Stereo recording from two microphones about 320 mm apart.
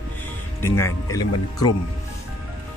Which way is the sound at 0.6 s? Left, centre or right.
Centre.